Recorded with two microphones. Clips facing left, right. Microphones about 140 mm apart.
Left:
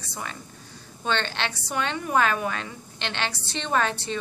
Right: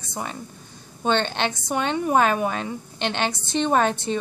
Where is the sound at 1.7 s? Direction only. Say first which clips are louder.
Right 4 dB; 40° right (ahead or behind).